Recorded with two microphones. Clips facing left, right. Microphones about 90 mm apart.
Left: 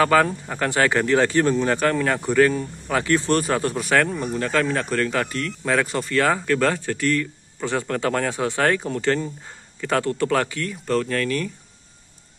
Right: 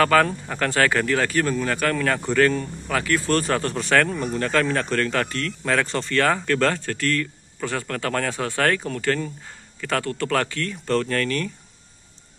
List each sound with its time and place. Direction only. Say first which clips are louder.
0.0 s speech: even; 15° left (ahead or behind)
2.9 s speech: left 2 dB; 25° left (ahead or behind)
10.9 s speech: even; 5° left (ahead or behind)